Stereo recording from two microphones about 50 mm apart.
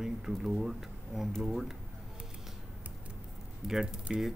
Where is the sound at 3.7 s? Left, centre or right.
Centre.